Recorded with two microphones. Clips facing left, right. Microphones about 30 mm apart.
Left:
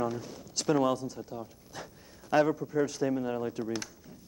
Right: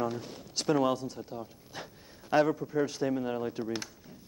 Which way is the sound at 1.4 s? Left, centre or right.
Right.